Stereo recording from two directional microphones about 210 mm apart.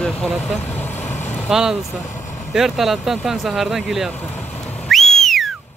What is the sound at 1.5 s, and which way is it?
Speech, centre (ahead or behind).